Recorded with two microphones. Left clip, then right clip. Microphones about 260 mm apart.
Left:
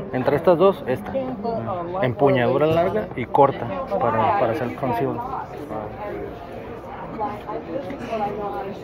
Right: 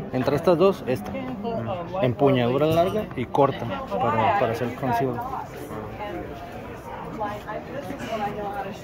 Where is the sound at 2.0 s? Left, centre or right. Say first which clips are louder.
Left 2 dB; centre.